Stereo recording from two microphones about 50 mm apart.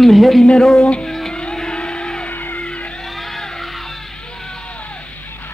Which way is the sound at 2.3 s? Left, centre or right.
Left.